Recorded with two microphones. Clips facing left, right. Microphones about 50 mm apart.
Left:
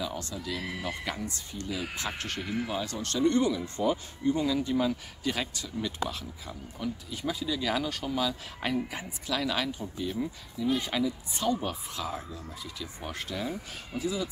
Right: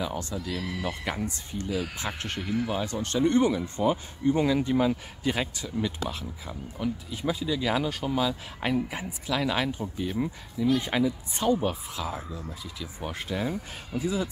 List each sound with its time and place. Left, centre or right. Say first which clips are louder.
0.0 s speech: right 3 dB; right
4.4 s speech: right 6 dB; right
4.6 s speech: right 3 dB; right
11.9 s speech: right 2 dB; centre; by 14.3 s right